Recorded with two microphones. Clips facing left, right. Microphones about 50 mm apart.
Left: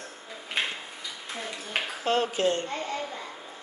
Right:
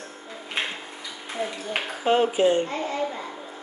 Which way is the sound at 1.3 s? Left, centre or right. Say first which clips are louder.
Right 5 dB; centre.